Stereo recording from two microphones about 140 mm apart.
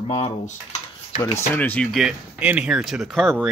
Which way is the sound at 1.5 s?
10° left (ahead or behind).